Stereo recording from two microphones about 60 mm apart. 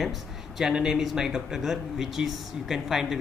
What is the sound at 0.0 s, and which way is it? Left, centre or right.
Speech, centre.